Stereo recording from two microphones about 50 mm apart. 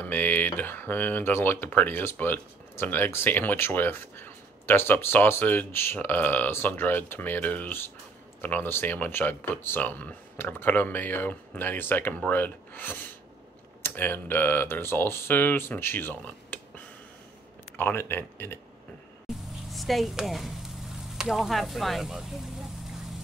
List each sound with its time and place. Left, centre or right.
0.0 s speech: left
2.7 s speech: left
8.6 s speech: left
8.9 s speech: left
17.9 s speech: left
19.7 s speech: centre